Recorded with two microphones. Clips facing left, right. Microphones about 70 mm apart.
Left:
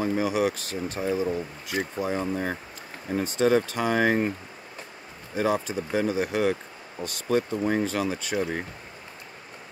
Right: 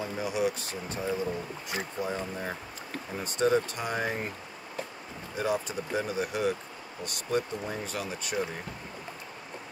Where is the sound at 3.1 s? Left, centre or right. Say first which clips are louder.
Left 4 dB; left.